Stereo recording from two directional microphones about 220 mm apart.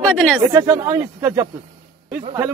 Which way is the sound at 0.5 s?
15° right (ahead or behind).